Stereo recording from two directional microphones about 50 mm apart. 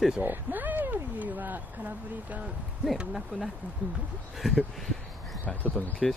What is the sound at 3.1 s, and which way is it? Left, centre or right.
Speech, centre.